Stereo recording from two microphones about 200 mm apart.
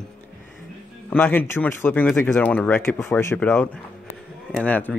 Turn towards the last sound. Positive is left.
turn(degrees=10)  # may be behind; listen again after turning